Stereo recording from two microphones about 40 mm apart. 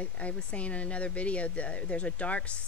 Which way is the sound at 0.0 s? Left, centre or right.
Left.